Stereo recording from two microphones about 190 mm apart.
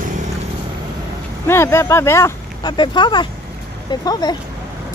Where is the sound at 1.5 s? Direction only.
15° left (ahead or behind).